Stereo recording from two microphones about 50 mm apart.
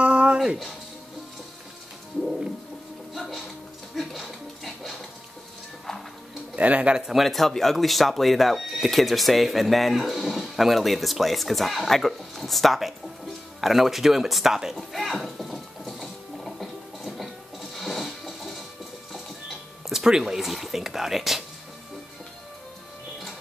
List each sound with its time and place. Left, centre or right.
0.0 s music: right
3.2 s music: centre
6.5 s a man's voice: right
7.0 s speech: centre
7.2 s speech: centre
14.8 s a sound: centre
19.9 s speech: centre